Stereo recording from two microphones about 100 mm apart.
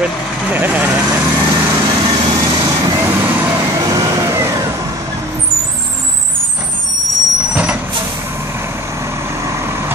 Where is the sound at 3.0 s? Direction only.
20° right (ahead or behind).